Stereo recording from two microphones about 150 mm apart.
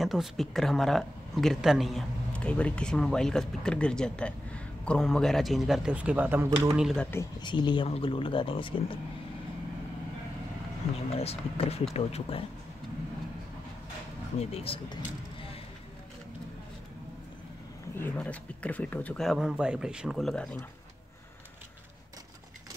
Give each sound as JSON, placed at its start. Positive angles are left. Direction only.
{"t": 0.0, "sound": "speech", "side_deg": 0}
{"t": 6.7, "sound": "speech", "side_deg": 0}
{"t": 7.4, "sound": "speech", "side_deg": 30}
{"t": 11.1, "sound": "speech", "side_deg": 40}
{"t": 14.4, "sound": "speech", "side_deg": 40}
{"t": 17.9, "sound": "speech", "side_deg": 10}